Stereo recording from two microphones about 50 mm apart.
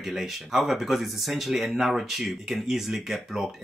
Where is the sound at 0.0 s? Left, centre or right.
Centre.